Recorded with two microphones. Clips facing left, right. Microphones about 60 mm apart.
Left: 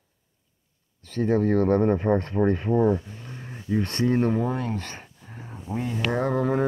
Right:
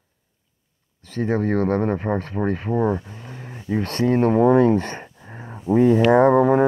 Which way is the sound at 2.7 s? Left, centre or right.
Right.